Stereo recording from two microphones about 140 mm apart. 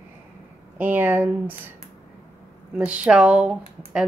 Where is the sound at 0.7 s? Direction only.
10° right (ahead or behind).